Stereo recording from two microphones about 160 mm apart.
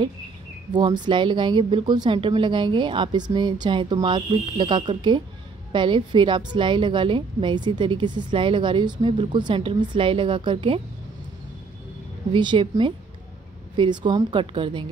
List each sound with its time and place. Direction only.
0.7 s a woman's voice: 30° right (ahead or behind)
12.3 s a woman's voice: 30° right (ahead or behind)